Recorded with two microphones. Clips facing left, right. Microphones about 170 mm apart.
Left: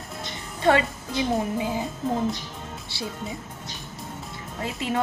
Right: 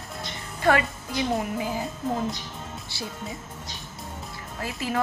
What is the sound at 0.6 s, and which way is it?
Speech, 25° left (ahead or behind).